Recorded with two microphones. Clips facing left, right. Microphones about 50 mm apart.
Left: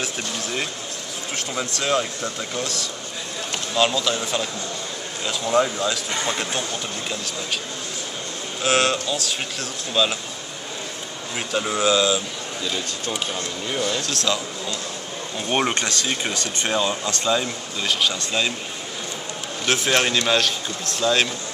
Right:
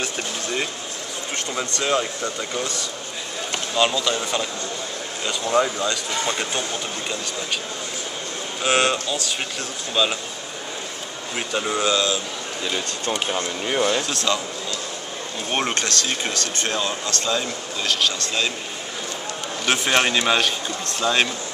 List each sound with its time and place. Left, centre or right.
0.0 s a sound: centre
1.3 s speech: centre
8.6 s speech: centre
11.3 s speech: centre
13.3 s speech: right
14.0 s speech: centre
15.7 s speech: centre
19.6 s a man's voice: centre